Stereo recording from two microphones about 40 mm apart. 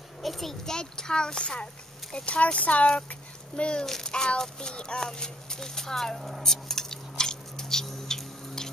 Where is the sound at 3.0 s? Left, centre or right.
Left.